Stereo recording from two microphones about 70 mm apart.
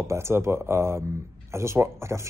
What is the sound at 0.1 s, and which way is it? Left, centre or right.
Speech, right.